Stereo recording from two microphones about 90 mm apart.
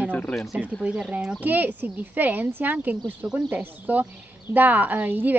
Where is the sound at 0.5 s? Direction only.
15° right (ahead or behind).